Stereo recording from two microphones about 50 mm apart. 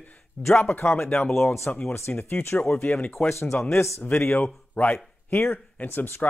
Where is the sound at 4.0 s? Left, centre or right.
Left.